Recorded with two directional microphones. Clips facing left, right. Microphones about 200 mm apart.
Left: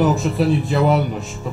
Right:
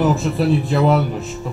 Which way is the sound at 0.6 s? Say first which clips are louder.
Right 1 dB; centre (ahead or behind).